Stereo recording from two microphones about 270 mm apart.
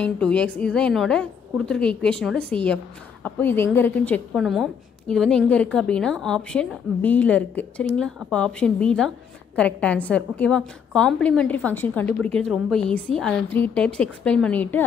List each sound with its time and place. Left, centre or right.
0.0 s a woman's voice: centre